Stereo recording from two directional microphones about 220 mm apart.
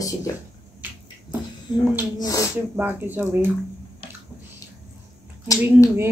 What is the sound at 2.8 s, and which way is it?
Speech, 10° right (ahead or behind).